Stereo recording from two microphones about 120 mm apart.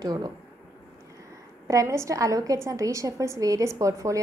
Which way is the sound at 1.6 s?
25° right (ahead or behind).